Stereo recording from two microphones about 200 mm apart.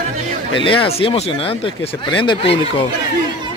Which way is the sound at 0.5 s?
25° left (ahead or behind).